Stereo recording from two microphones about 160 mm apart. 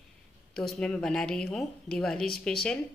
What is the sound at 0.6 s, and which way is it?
A woman's voice, 5° left (ahead or behind).